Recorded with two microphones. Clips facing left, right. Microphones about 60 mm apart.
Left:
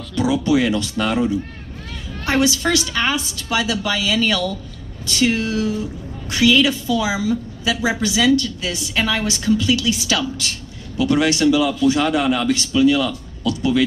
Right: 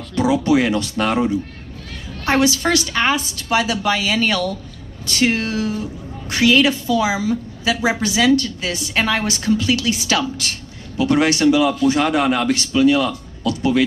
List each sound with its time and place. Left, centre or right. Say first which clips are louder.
0.1 s a woman's voice: right 2 dB; right